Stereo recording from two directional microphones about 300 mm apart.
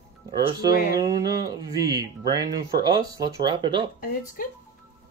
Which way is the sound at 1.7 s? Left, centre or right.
Centre.